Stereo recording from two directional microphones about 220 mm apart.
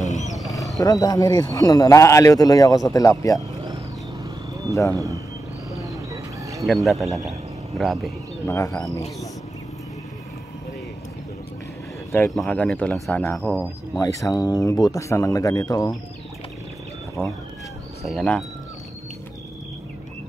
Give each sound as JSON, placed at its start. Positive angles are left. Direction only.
{"t": 0.0, "sound": "wild animals", "side_deg": 30}
{"t": 0.7, "sound": "speech", "side_deg": 15}
{"t": 3.6, "sound": "a sound", "side_deg": -20}
{"t": 4.9, "sound": "speech", "side_deg": -15}
{"t": 6.6, "sound": "speech", "side_deg": 0}
{"t": 8.5, "sound": "speech", "side_deg": 15}
{"t": 12.1, "sound": "speech", "side_deg": 5}
{"t": 13.9, "sound": "speech", "side_deg": 15}
{"t": 17.2, "sound": "speech", "side_deg": -10}
{"t": 18.0, "sound": "speech", "side_deg": 5}